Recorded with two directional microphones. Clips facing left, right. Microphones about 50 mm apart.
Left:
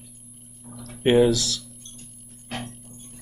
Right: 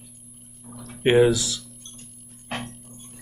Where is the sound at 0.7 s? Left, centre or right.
Centre.